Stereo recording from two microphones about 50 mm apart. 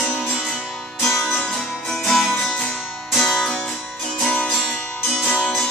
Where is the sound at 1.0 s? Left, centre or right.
Centre.